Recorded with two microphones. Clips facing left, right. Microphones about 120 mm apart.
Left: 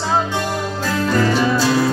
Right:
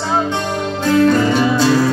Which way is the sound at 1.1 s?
20° right (ahead or behind).